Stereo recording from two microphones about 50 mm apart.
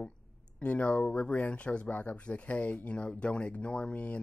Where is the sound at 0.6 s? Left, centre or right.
Left.